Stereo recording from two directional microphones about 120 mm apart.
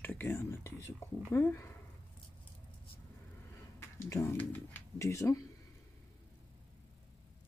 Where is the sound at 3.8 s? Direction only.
25° left (ahead or behind).